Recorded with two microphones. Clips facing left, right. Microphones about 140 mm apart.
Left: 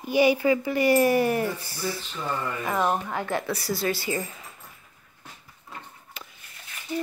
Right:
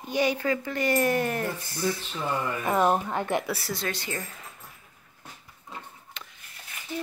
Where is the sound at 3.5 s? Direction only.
Centre (ahead or behind).